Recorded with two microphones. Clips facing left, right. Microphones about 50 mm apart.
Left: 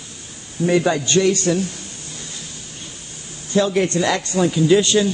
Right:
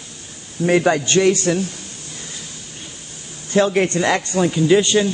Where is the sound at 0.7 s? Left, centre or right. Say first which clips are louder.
Right 2 dB; right.